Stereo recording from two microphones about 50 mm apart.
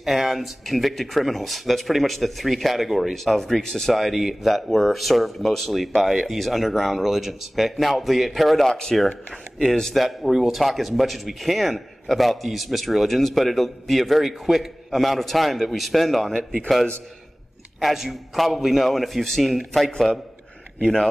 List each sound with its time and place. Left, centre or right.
0.0 s speech: centre
17.7 s speech: centre
19.9 s a man's voice: centre